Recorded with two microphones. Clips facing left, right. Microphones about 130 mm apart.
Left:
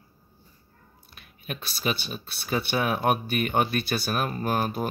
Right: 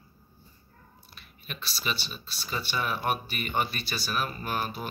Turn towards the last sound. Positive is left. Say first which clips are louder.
# left 6 dB
turn(degrees=45)  # may be behind; listen again after turning